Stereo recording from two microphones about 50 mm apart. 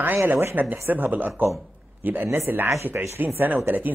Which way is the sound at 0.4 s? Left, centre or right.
Right.